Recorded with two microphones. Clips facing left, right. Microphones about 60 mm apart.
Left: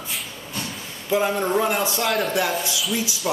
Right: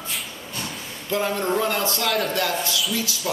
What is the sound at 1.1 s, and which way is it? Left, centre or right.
A man's voice, centre.